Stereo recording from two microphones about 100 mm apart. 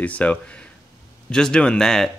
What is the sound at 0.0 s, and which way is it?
Speech, 15° left (ahead or behind).